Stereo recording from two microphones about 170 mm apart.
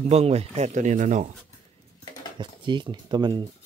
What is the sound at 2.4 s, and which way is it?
Speech, 25° right (ahead or behind).